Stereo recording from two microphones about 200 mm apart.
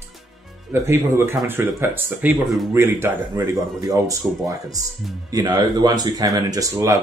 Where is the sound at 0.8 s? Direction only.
10° right (ahead or behind).